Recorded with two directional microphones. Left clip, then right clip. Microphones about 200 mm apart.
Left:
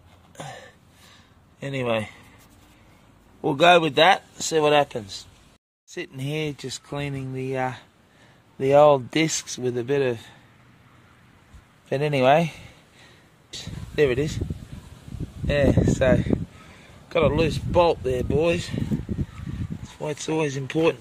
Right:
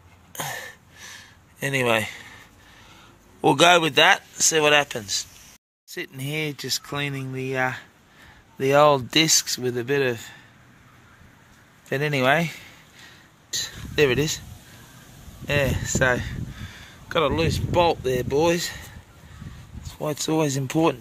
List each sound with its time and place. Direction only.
0.4 s gasp: 10° right (ahead or behind)
1.6 s speech: 5° right (ahead or behind)
3.3 s speech: 10° right (ahead or behind)
5.9 s speech: 15° left (ahead or behind)
11.9 s speech: 10° left (ahead or behind)
13.5 s speech: 5° right (ahead or behind)
15.4 s speech: centre (ahead or behind)
17.4 s speech: 20° left (ahead or behind)
18.1 s speech: 5° right (ahead or behind)
19.9 s speech: 25° right (ahead or behind)